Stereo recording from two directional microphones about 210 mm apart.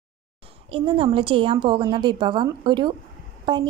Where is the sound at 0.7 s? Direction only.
25° right (ahead or behind).